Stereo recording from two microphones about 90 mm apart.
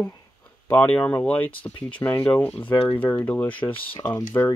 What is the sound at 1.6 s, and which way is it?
Speech, 65° left (ahead or behind).